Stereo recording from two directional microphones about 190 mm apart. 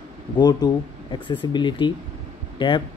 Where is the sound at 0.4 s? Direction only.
20° left (ahead or behind).